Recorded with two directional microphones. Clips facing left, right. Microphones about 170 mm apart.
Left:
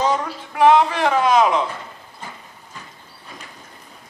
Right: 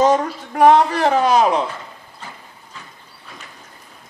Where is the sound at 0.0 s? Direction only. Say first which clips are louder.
Right 5 dB; 45° right (ahead or behind).